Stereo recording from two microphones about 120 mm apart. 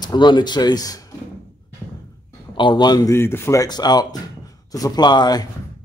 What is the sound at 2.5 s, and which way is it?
A man's voice, 45° left (ahead or behind).